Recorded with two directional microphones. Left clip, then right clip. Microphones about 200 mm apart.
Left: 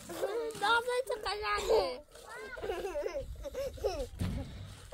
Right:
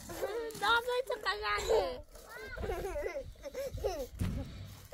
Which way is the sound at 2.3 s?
35° left (ahead or behind).